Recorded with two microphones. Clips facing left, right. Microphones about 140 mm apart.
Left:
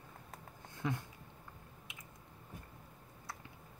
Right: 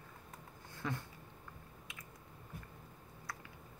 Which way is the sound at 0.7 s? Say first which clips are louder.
Left 3 dB; 20° left (ahead or behind).